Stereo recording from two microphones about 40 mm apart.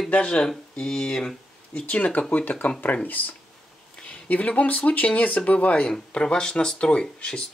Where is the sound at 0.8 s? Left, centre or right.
Centre.